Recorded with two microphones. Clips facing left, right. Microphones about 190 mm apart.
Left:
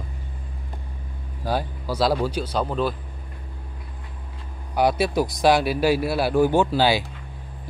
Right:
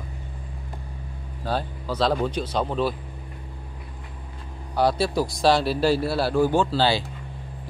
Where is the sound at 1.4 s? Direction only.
10° left (ahead or behind).